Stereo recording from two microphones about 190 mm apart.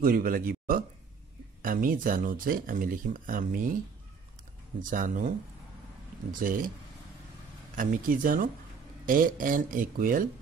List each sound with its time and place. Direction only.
0.0 s speech: 50° right (ahead or behind)
4.7 s speech: 45° right (ahead or behind)
6.4 s speech: 45° right (ahead or behind)
7.7 s speech: 45° right (ahead or behind)